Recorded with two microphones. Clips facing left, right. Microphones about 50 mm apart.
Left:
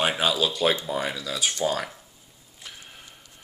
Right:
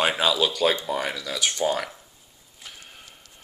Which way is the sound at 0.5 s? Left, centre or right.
Right.